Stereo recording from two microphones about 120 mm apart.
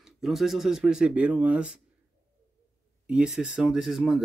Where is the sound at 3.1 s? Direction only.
10° right (ahead or behind).